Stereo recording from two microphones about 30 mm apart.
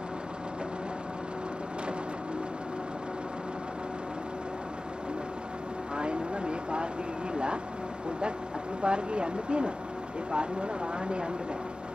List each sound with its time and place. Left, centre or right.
5.9 s vehicle: right
8.8 s speech: right